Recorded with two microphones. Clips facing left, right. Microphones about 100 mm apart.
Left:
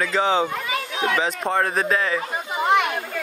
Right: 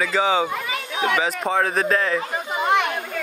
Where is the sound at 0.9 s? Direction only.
20° right (ahead or behind).